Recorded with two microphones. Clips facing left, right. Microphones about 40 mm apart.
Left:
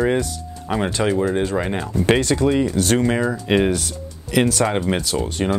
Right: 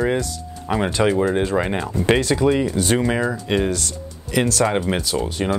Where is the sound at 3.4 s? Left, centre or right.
Centre.